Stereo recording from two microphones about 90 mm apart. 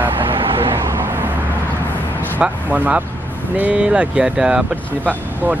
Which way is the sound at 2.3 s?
15° right (ahead or behind).